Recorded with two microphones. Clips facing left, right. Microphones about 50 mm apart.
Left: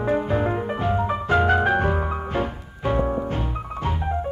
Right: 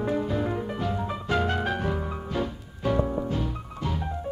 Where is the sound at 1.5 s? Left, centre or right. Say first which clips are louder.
Left 8 dB; left.